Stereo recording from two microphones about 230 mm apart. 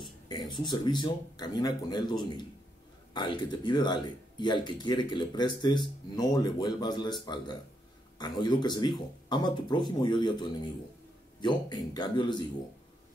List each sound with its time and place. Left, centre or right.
0.0 s speech: centre